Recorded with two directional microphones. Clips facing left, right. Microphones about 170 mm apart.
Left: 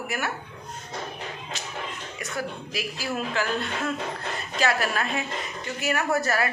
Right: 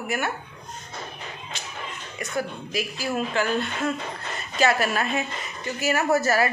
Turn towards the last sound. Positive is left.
turn(degrees=-5)  # may be behind; listen again after turning